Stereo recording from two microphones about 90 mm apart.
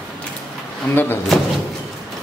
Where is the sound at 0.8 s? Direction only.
25° left (ahead or behind).